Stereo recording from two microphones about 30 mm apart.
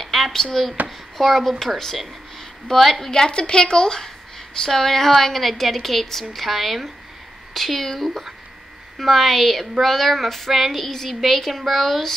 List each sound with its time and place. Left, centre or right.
0.0 s a sound: centre
0.3 s a woman's voice: centre
2.7 s a woman's voice: centre
3.1 s a woman's voice: left
4.6 s a woman's voice: centre
10.9 s a woman's voice: centre